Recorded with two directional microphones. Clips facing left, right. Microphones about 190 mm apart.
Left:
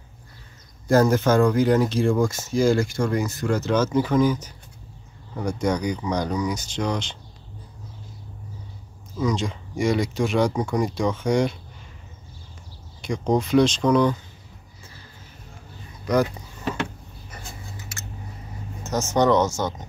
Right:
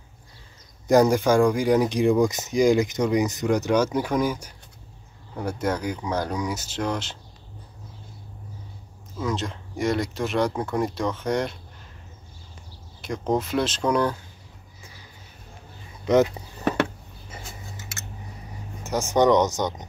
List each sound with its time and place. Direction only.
0.8 s speech: 15° right (ahead or behind)
9.2 s speech: centre (ahead or behind)
13.0 s speech: centre (ahead or behind)
16.1 s speech: 25° right (ahead or behind)
18.9 s speech: 15° right (ahead or behind)